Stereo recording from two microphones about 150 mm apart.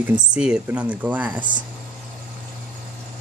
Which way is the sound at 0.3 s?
5° right (ahead or behind).